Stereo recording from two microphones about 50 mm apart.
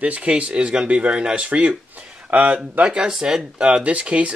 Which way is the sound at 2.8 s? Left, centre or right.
Centre.